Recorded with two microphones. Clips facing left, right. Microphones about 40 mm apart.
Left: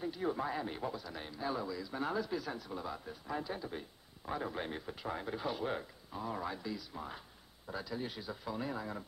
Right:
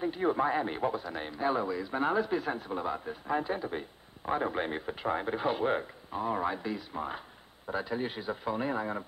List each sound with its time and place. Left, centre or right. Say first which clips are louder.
0.0 s a man's voice: right 8 dB; right